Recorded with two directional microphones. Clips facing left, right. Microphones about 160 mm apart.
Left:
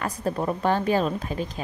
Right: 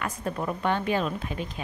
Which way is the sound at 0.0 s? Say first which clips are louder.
Left 4 dB; 35° left (ahead or behind).